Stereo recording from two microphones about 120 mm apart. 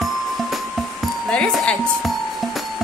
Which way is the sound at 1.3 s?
10° left (ahead or behind).